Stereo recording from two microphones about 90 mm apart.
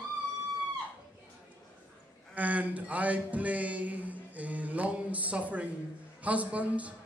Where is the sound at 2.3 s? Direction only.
15° right (ahead or behind).